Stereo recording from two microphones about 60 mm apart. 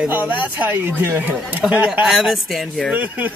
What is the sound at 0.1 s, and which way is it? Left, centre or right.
Speech, right.